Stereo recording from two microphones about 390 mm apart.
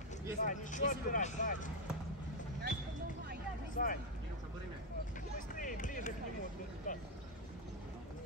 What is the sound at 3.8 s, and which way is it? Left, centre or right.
Speech, centre.